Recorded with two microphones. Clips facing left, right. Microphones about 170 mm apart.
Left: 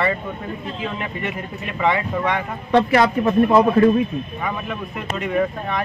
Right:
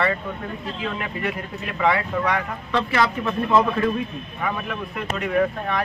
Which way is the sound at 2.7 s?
35° left (ahead or behind).